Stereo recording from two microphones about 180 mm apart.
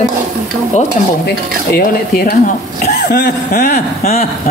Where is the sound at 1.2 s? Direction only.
60° left (ahead or behind).